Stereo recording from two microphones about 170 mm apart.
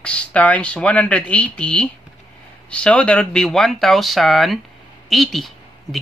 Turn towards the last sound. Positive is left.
turn(degrees=0)  # may be behind; listen again after turning